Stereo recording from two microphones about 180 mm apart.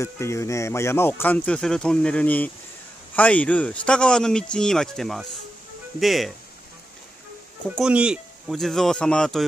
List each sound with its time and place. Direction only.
0.0 s speech: 15° left (ahead or behind); by 6.3 s centre (ahead or behind)
7.7 s speech: 5° right (ahead or behind)